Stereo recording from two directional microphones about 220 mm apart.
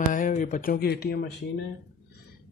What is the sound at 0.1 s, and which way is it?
Speech, 35° left (ahead or behind).